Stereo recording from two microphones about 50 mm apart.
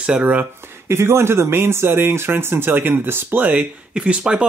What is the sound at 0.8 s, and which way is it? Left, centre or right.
Speech, right.